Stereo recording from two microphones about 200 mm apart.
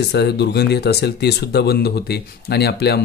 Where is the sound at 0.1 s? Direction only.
55° left (ahead or behind).